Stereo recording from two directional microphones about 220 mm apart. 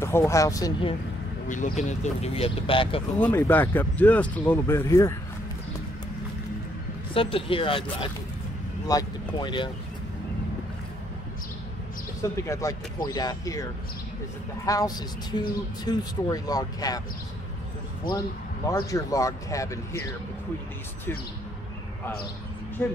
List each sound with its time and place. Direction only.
0.0 s speech: 10° left (ahead or behind)
1.5 s speech: 35° left (ahead or behind)
3.2 s speech: 10° left (ahead or behind)
7.2 s speech: 25° left (ahead or behind)
12.2 s speech: 15° left (ahead or behind)
14.7 s speech: 15° left (ahead or behind)
18.1 s speech: 40° left (ahead or behind)
18.7 s speech: 15° left (ahead or behind)
22.8 s speech: 10° left (ahead or behind)